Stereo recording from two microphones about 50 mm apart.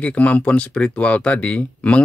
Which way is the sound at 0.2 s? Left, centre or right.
Left.